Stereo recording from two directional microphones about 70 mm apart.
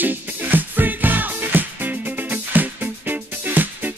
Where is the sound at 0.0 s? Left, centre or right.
Right.